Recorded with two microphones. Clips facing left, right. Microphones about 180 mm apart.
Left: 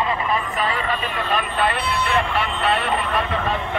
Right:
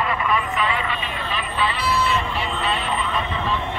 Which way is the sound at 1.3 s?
55° left (ahead or behind).